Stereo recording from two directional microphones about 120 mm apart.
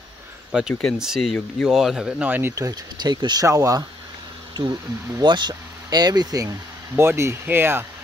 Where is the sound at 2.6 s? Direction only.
35° right (ahead or behind).